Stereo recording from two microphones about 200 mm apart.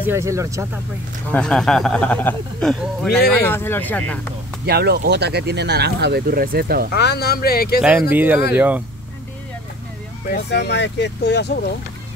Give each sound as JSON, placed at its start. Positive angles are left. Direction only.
{"t": 0.0, "sound": "speech", "side_deg": -15}
{"t": 1.3, "sound": "speech", "side_deg": 5}
{"t": 4.6, "sound": "speech", "side_deg": -55}
{"t": 6.9, "sound": "speech", "side_deg": 55}
{"t": 8.1, "sound": "speech", "side_deg": -10}
{"t": 10.3, "sound": "speech", "side_deg": 55}